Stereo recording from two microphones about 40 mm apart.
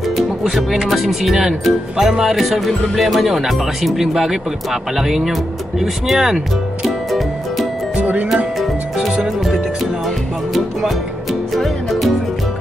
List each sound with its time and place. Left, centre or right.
0.4 s speech: centre
7.1 s music: centre
8.0 s music: right
10.0 s music: centre